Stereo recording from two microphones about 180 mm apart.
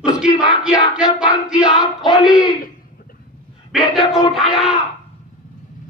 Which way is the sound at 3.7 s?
Centre (ahead or behind).